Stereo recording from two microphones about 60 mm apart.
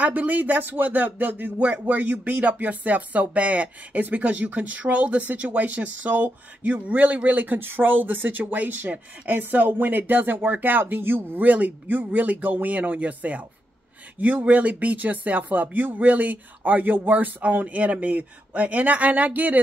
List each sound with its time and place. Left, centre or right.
0.0 s speech: right